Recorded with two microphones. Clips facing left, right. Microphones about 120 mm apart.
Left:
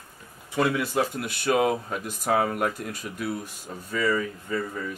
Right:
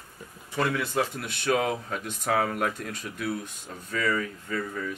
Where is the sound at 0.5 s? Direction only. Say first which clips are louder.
Left 3 dB; 10° left (ahead or behind).